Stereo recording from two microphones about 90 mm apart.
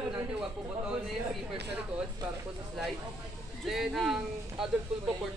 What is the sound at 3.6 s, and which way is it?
Speech, centre (ahead or behind).